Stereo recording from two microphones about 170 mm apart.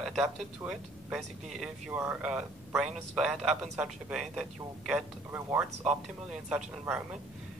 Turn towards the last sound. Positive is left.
turn(degrees=-5)  # may be behind; listen again after turning